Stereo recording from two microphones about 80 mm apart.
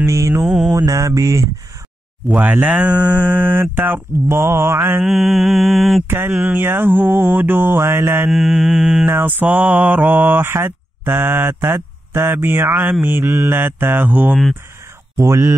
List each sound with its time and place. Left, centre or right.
0.0 s mantra: right
2.4 s mantra: right
5.0 s mantra: centre
6.0 s mantra: right
8.3 s mantra: centre
9.1 s mantra: right
15.1 s speech: right